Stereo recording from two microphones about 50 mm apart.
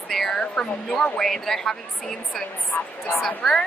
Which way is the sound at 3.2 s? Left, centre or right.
Centre.